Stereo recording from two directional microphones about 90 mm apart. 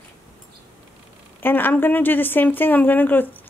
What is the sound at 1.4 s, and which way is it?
Speech, 20° left (ahead or behind).